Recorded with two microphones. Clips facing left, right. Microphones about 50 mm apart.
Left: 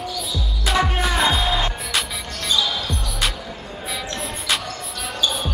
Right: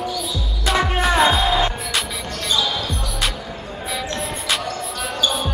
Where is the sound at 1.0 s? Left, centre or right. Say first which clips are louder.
Right 4 dB; right.